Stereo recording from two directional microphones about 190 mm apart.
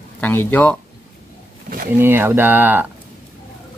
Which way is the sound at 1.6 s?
50° right (ahead or behind).